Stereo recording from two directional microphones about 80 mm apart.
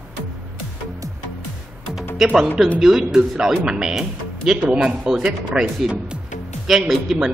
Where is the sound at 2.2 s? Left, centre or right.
Centre.